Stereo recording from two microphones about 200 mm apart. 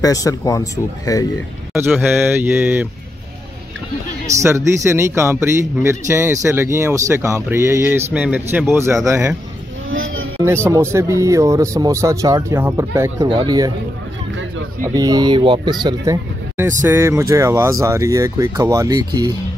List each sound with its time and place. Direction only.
0.0 s speech: 15° left (ahead or behind)
1.8 s a man's voice: 10° right (ahead or behind)
4.4 s a man's voice: 15° right (ahead or behind)
9.8 s a sound: 75° right (ahead or behind)
10.4 s a man's voice: 10° right (ahead or behind)
15.0 s a man's voice: 20° right (ahead or behind)